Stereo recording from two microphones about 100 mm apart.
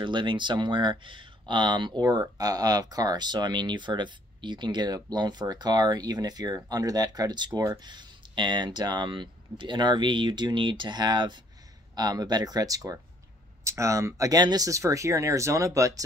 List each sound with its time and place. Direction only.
0.0 s speech: 55° right (ahead or behind); by 16.0 s 30° right (ahead or behind)